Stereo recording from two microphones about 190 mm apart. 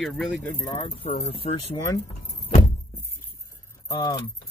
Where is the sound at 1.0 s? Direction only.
40° left (ahead or behind).